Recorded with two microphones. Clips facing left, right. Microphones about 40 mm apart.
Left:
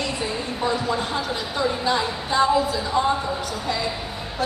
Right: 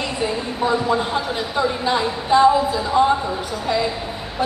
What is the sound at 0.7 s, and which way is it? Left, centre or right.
A woman's voice, centre.